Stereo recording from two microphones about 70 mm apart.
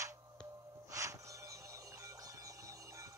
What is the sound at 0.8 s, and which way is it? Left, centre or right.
Music, right.